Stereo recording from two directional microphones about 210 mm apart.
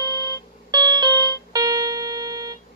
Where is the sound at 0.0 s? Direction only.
20° right (ahead or behind).